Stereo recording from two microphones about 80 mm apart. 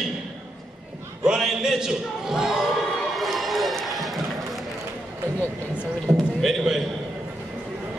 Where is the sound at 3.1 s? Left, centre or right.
Centre.